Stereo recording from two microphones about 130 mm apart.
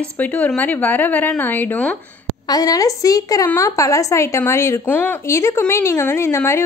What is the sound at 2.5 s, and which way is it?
A woman's voice, 30° left (ahead or behind).